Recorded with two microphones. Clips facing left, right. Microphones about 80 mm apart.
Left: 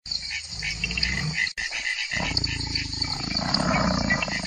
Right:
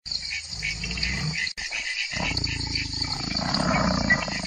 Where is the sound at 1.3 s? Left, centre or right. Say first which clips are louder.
Left 3 dB; left.